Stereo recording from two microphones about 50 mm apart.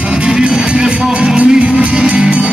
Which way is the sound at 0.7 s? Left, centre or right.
Centre.